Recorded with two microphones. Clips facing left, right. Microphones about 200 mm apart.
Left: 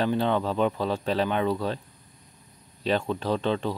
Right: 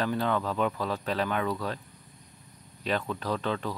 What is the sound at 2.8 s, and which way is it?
Speech, 30° left (ahead or behind).